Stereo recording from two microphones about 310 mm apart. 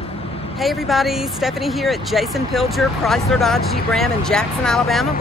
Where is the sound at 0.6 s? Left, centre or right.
Centre.